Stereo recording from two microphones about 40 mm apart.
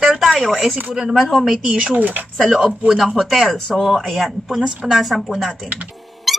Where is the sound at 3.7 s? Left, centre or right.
Centre.